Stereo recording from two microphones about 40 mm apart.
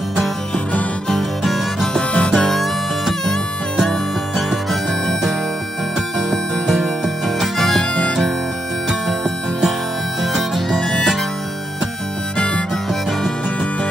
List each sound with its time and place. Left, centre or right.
1.4 s music: centre
2.0 s music: left
2.3 s music: centre
7.5 s harmonica: centre
10.8 s harmonica: centre